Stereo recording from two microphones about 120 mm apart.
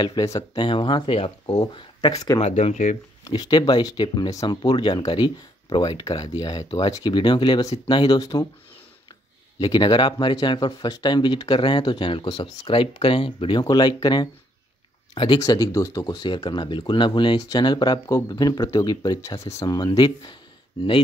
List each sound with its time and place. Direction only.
0.0 s speech: 30° left (ahead or behind)
0.6 s speech: 45° left (ahead or behind)
2.4 s speech: 75° left (ahead or behind)
3.3 s speech: 35° left (ahead or behind)
9.6 s speech: 40° left (ahead or behind)
13.6 s speech: 35° left (ahead or behind)
15.4 s speech: 30° left (ahead or behind)